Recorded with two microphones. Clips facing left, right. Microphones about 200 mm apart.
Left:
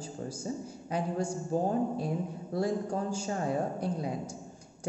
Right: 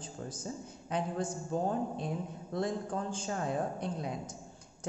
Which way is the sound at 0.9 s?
10° left (ahead or behind).